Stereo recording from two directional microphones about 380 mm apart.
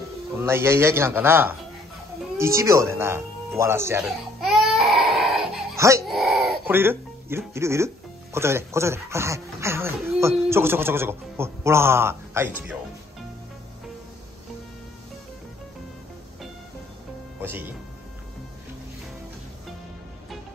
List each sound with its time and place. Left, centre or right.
0.4 s speech: centre
17.4 s speech: centre